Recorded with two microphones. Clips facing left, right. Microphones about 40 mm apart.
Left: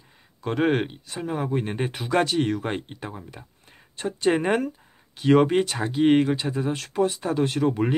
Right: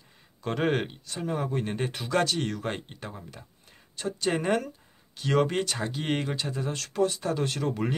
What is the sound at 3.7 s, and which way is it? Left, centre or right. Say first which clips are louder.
Speech: left 3 dB; left.